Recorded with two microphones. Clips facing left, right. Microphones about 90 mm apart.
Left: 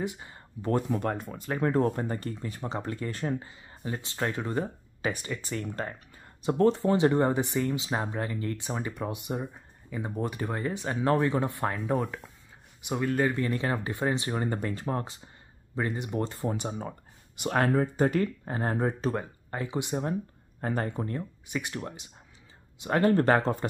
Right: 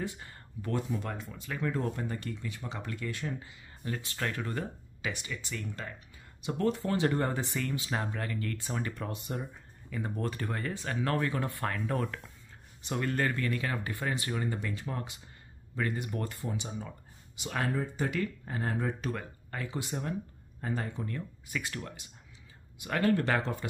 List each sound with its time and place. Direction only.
0.0 s a sound: 20° left (ahead or behind)
0.8 s speech: 50° left (ahead or behind)
3.8 s speech: 20° left (ahead or behind)
5.0 s speech: 40° left (ahead or behind); by 13.3 s 10° left (ahead or behind)
13.3 s speech: 25° left (ahead or behind)
14.3 s speech: 40° left (ahead or behind)
15.7 s speech: 25° left (ahead or behind)
16.3 s speech: 50° left (ahead or behind); by 20.2 s 25° left (ahead or behind)
20.6 s speech: 50° left (ahead or behind)
21.1 s speech: 25° left (ahead or behind)